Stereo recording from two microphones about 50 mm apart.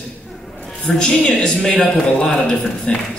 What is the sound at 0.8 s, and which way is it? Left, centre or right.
A man's voice, left.